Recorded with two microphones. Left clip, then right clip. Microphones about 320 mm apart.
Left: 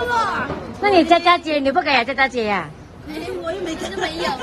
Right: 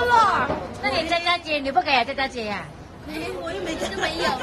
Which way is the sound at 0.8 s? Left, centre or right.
Centre.